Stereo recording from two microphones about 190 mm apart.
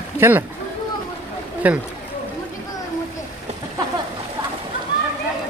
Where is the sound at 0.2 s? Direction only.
10° right (ahead or behind).